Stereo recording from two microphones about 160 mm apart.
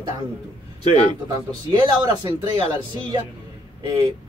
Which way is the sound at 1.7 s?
30° right (ahead or behind).